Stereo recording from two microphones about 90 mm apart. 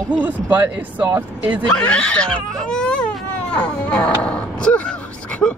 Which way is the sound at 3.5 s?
15° left (ahead or behind).